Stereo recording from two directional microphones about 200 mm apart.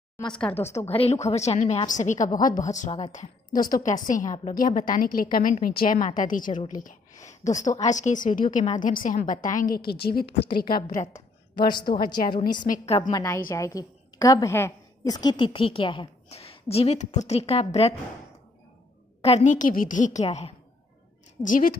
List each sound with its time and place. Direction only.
0.3 s speech: 5° left (ahead or behind)
0.7 s a woman's voice: 30° left (ahead or behind); by 10.2 s 50° left (ahead or behind)
11.0 s a woman's voice: 20° left (ahead or behind)
12.6 s a woman's voice: 40° left (ahead or behind)
13.1 s a woman's voice: 15° left (ahead or behind)
19.2 s a woman's voice: 35° left (ahead or behind)
21.4 s a woman's voice: 40° left (ahead or behind)